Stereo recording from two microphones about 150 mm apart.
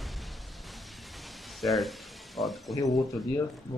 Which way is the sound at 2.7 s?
20° left (ahead or behind).